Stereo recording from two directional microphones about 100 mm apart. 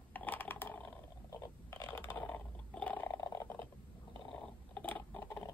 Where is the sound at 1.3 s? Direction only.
35° left (ahead or behind).